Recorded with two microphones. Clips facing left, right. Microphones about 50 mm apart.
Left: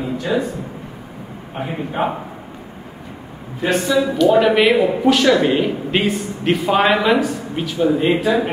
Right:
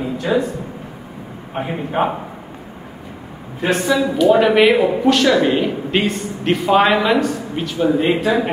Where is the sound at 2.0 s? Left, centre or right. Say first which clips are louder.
Right 2 dB; right.